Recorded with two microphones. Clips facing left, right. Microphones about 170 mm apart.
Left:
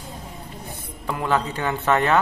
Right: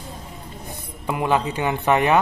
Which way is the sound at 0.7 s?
15° right (ahead or behind).